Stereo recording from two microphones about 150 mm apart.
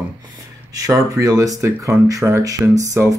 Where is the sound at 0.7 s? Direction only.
20° right (ahead or behind).